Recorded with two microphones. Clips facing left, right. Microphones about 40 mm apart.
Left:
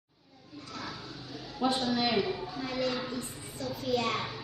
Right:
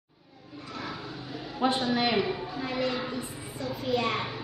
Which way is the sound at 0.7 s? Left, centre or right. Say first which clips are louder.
Right 4 dB; centre.